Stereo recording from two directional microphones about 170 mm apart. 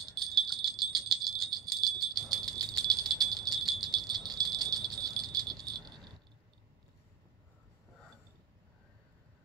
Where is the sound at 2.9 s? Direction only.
Centre (ahead or behind).